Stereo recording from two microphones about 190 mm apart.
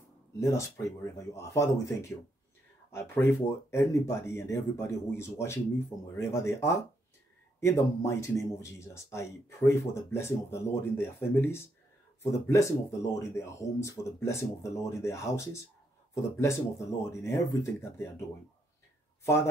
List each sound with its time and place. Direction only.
0.4 s speech: 15° left (ahead or behind)